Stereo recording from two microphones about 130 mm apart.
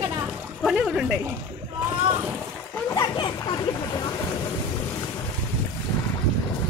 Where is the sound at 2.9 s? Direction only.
30° left (ahead or behind).